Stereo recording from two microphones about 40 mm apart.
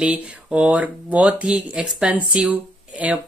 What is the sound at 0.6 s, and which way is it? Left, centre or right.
Speech, right.